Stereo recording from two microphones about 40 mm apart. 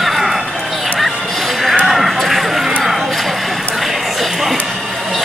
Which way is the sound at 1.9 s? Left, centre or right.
Centre.